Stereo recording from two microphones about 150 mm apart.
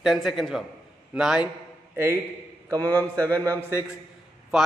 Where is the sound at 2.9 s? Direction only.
20° right (ahead or behind).